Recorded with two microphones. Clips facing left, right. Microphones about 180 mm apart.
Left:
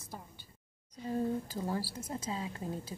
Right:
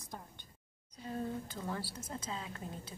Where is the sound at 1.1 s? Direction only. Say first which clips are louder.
Left 6 dB; 35° left (ahead or behind).